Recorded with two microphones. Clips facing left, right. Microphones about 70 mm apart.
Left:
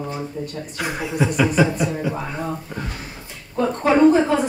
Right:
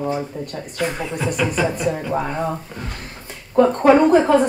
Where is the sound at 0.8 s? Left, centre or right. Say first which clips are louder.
Even; centre.